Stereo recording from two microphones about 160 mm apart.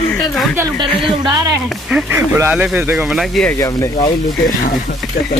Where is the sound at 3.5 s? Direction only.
20° left (ahead or behind).